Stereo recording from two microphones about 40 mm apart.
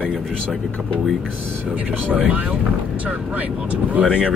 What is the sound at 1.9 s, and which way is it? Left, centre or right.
Speech, right.